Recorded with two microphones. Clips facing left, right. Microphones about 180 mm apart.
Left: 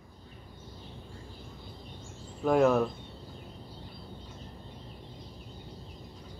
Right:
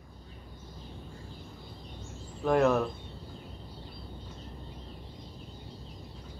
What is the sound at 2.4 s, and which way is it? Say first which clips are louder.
Speech: left 1 dB; 5° left (ahead or behind).